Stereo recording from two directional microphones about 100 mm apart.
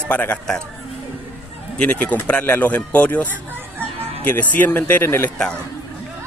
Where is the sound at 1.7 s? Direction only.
10° left (ahead or behind).